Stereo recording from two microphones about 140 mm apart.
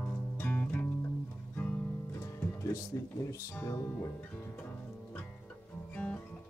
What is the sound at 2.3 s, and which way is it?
Music, 20° left (ahead or behind).